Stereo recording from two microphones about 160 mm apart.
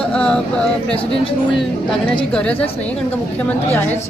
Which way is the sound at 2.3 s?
5° left (ahead or behind).